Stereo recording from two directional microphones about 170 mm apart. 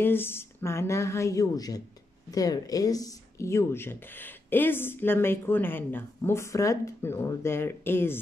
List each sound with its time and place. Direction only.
0.0 s speech: 15° left (ahead or behind)